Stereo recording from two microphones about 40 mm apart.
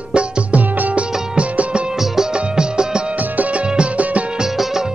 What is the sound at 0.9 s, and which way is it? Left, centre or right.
Music, right.